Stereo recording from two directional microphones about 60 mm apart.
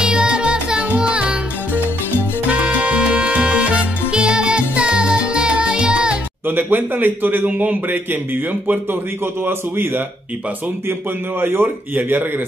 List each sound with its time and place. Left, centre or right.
0.0 s music: centre
6.4 s a man's voice: right
9.4 s a man's voice: right